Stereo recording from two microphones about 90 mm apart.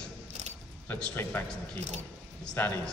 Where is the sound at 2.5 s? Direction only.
20° left (ahead or behind).